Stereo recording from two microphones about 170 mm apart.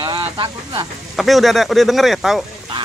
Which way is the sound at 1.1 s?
Centre (ahead or behind).